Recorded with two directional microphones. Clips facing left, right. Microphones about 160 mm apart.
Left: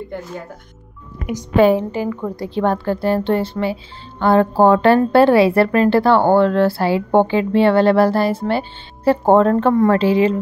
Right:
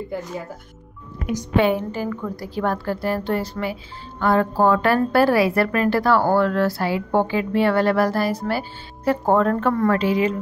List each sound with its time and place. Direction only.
0.1 s speech: 5° right (ahead or behind)
1.6 s a woman's voice: 35° left (ahead or behind)
1.9 s a woman's voice: 20° left (ahead or behind)